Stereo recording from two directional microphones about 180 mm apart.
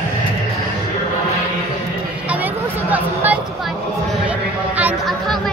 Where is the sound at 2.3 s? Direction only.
10° right (ahead or behind).